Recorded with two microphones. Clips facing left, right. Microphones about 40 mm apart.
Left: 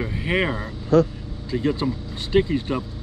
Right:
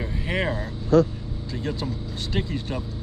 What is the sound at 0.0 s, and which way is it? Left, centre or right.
Vehicle, left.